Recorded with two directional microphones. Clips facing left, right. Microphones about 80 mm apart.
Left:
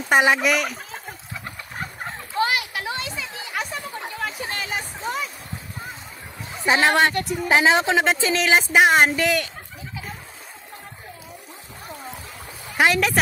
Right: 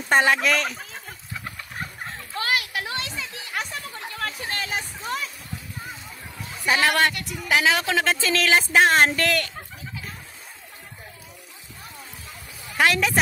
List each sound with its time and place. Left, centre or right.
0.1 s speech: centre
2.4 s a sound: centre
3.1 s chatter: centre
3.8 s a sound: centre
6.6 s speech: left
7.2 s speech: left; by 9.5 s centre
12.7 s speech: centre